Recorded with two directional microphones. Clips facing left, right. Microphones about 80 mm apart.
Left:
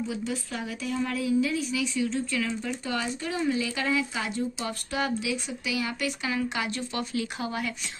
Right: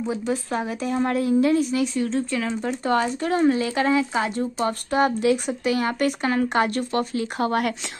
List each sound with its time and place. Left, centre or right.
0.0 s a woman's voice: right